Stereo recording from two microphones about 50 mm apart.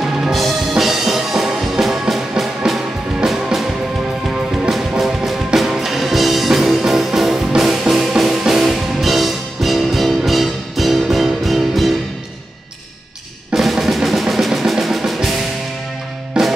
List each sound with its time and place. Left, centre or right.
0.0 s music: centre
0.3 s music: centre
4.3 s music: centre
13.5 s drum: centre
16.3 s music: centre